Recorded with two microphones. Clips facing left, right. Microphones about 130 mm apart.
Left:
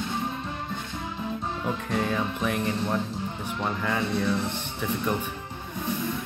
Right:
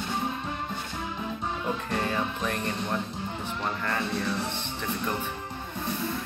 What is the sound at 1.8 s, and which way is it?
Music, centre (ahead or behind).